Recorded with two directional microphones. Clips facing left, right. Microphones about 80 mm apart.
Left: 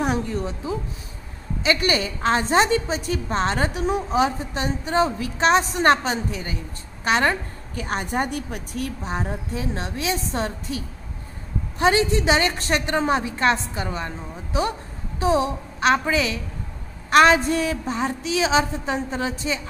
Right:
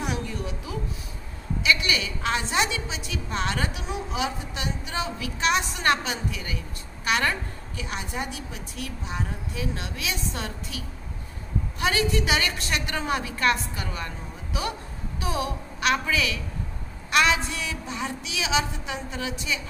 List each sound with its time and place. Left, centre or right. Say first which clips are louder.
0.0 s a sound: left 7 dB; left
1.6 s a woman's voice: left 4 dB; left
7.7 s a woman's voice: left 8 dB; left
11.8 s a woman's voice: left 6 dB; left